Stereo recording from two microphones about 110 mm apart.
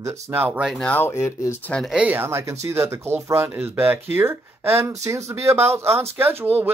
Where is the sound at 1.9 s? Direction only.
10° right (ahead or behind).